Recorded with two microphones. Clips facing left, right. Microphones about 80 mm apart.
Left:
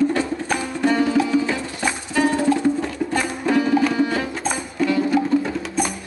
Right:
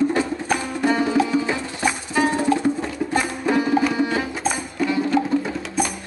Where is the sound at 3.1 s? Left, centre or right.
Centre.